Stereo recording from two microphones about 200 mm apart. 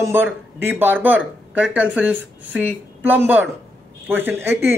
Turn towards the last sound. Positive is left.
turn(degrees=-10)  # may be behind; listen again after turning